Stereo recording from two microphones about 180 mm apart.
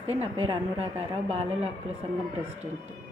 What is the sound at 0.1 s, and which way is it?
A woman's voice, 35° right (ahead or behind).